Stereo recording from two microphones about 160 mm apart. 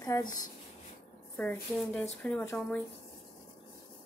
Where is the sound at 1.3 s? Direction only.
5° left (ahead or behind).